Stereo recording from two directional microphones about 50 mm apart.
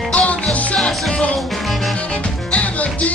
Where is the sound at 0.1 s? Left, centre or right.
Left.